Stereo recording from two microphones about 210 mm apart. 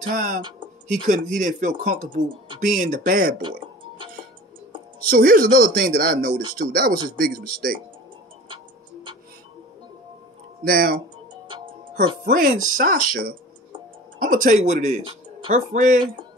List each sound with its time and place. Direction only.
0.0 s speech: 40° right (ahead or behind)
0.4 s speech: 20° right (ahead or behind)
0.8 s speech: 40° right (ahead or behind)
2.2 s speech: 25° right (ahead or behind)
2.6 s speech: 40° right (ahead or behind)
5.0 s speech: 45° right (ahead or behind)
10.6 s speech: 45° right (ahead or behind)
11.4 s music: 25° right (ahead or behind)
12.3 s speech: 40° right (ahead or behind)